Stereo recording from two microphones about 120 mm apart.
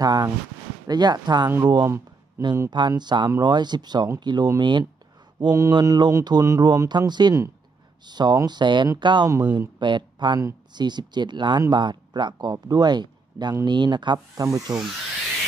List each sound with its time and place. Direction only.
0.0 s speech: 35° right (ahead or behind)
2.9 s speech: 35° right (ahead or behind)